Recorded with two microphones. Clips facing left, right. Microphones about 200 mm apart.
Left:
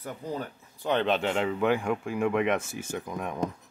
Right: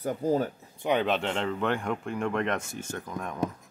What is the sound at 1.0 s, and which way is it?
Speech, centre (ahead or behind).